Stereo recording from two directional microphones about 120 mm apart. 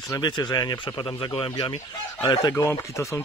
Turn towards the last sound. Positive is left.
turn(degrees=25)  # may be behind; listen again after turning